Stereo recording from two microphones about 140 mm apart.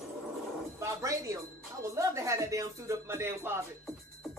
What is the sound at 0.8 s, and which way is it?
Speech, 20° right (ahead or behind).